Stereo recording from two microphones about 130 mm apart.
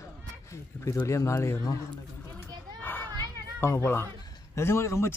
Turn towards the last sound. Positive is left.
turn(degrees=20)  # may be behind; listen again after turning